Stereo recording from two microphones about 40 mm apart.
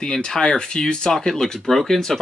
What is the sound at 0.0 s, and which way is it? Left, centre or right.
A man's voice, centre.